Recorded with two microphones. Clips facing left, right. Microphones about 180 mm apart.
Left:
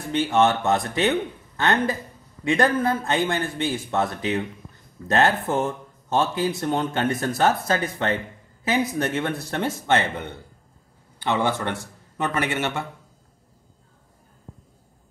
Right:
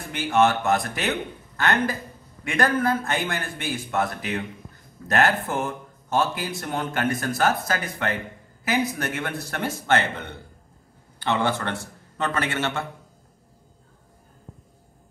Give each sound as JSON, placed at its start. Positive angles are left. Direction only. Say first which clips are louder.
{"t": 0.1, "sound": "a man's voice", "louder": "left 1 dB", "side_deg": 25}